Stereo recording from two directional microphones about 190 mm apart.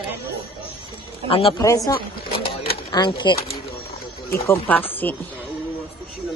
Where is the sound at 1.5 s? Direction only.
15° left (ahead or behind).